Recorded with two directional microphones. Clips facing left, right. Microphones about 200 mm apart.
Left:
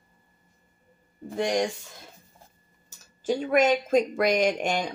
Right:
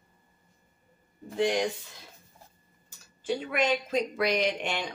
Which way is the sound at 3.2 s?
45° left (ahead or behind).